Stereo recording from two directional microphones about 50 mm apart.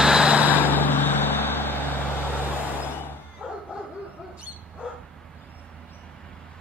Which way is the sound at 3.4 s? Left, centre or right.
Centre.